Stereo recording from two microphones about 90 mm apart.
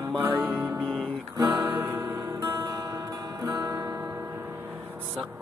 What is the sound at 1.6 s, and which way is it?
Music, 25° right (ahead or behind).